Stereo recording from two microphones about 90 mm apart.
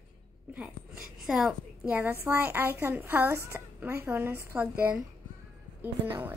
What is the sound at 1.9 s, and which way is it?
A child's voice, 25° right (ahead or behind).